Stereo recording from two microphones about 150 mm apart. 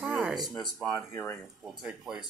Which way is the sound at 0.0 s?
5° right (ahead or behind).